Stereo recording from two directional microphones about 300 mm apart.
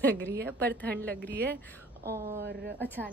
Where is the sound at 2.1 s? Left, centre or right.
Centre.